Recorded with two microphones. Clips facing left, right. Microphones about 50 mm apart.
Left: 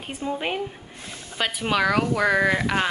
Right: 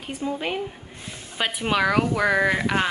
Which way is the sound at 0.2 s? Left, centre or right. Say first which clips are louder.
Even; centre.